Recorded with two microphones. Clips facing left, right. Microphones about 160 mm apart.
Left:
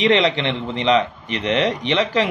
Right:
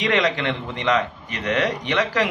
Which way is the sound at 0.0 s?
25° left (ahead or behind).